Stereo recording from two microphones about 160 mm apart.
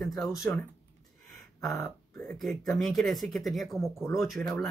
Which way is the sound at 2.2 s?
Centre (ahead or behind).